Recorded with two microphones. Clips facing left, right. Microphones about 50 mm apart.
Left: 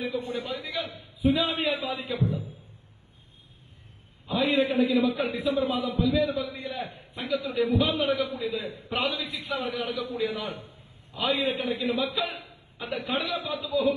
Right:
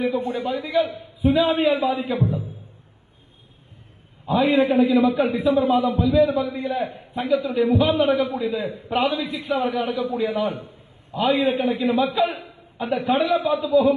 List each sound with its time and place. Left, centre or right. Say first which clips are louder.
0.3 s a man's voice: right 8 dB; centre
4.3 s a man's voice: right 7 dB; centre